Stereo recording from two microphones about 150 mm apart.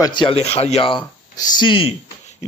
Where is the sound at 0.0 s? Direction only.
30° left (ahead or behind).